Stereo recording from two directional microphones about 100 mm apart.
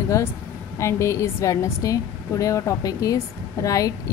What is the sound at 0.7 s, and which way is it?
A woman's voice, 30° left (ahead or behind).